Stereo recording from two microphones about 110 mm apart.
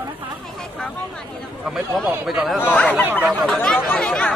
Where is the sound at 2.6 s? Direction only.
15° left (ahead or behind).